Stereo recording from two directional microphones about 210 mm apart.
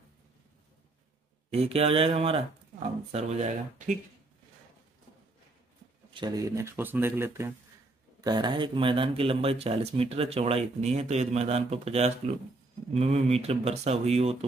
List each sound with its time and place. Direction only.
1.5 s speech: 30° right (ahead or behind)
6.1 s speech: 20° right (ahead or behind)